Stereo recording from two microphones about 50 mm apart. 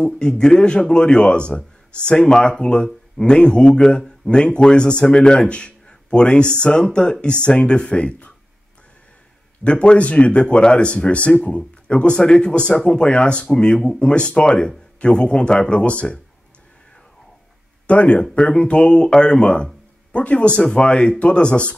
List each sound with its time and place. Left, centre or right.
0.2 s speech: centre
9.7 s speech: left
17.8 s speech: left